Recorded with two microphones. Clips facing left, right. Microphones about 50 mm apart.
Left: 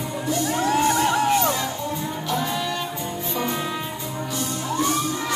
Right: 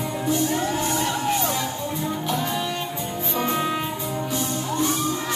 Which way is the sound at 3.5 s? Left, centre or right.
Right.